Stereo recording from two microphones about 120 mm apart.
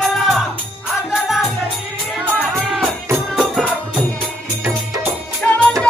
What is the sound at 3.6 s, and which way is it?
Music, 5° left (ahead or behind).